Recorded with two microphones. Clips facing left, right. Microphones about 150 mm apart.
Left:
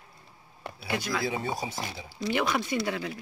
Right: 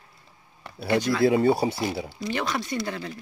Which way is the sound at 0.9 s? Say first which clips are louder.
Right 7 dB; 10° left (ahead or behind).